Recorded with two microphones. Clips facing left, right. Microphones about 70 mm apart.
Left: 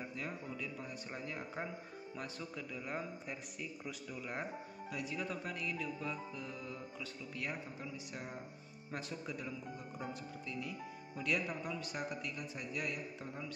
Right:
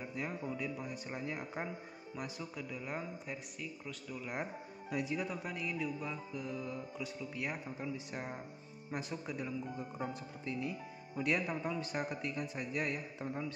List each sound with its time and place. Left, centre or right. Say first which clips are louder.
0.1 s speech: right 4 dB; centre
2.1 s music: right 3 dB; centre
4.9 s speech: right 6 dB; right
5.2 s music: right 1 dB; centre
8.1 s a man's voice: right 4 dB; right
8.9 s a man's voice: right 3 dB; centre